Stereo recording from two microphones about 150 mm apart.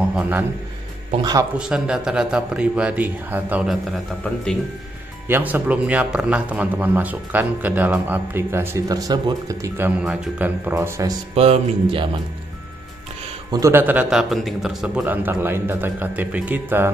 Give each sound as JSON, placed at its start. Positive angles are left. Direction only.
{"t": 0.1, "sound": "a man's voice", "side_deg": -10}
{"t": 1.6, "sound": "a man's voice", "side_deg": -5}
{"t": 5.3, "sound": "a man's voice", "side_deg": -10}
{"t": 10.7, "sound": "speech", "side_deg": -20}
{"t": 11.3, "sound": "speech", "side_deg": -40}
{"t": 13.5, "sound": "a man's voice", "side_deg": -20}
{"t": 14.3, "sound": "a man's voice", "side_deg": 0}
{"t": 15.0, "sound": "a man's voice", "side_deg": -15}